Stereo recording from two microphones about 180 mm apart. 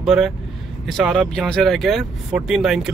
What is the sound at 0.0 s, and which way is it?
Speech, centre (ahead or behind).